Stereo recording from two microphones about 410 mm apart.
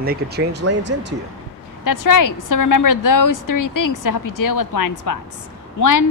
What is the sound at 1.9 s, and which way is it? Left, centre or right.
A woman's voice, left.